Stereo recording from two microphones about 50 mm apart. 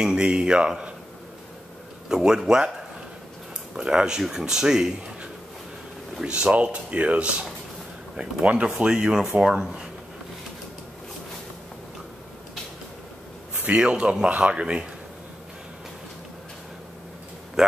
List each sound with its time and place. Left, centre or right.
0.0 s speech: centre
2.0 s speech: centre
3.7 s speech: centre
6.2 s speech: right
13.7 s speech: centre
17.6 s a sound: centre